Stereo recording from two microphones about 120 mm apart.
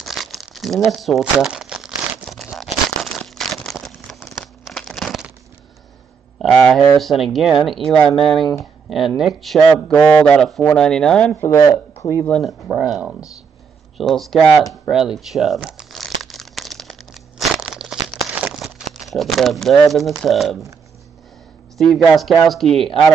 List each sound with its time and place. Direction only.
0.0 s crumpling: centre (ahead or behind)
6.3 s a sound: 5° left (ahead or behind)
7.0 s speech: centre (ahead or behind)
11.4 s speech: 30° left (ahead or behind)
12.3 s speech: centre (ahead or behind)
15.6 s crumpling: centre (ahead or behind)
18.3 s speech: 5° right (ahead or behind)
21.7 s speech: centre (ahead or behind)